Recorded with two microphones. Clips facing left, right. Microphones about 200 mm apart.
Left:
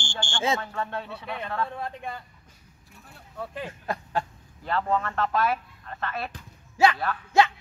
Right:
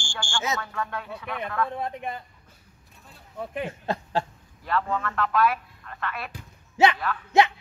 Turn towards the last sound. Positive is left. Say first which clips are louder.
# right 1 dB
turn(degrees=-20)  # may be behind; listen again after turning